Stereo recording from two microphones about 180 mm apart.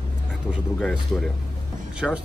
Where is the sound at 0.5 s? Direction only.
Centre (ahead or behind).